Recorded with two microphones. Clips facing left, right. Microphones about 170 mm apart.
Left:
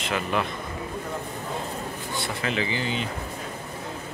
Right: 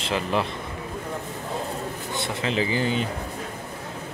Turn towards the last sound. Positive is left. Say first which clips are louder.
# right 4 dB
turn(degrees=-45)  # may be behind; listen again after turning